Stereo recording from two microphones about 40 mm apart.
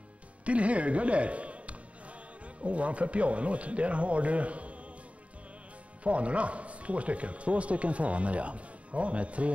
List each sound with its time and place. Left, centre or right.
0.5 s speech: right
6.0 s speech: right